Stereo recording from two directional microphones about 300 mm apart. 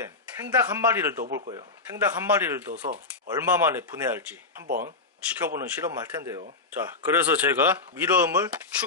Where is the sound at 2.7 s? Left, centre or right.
Right.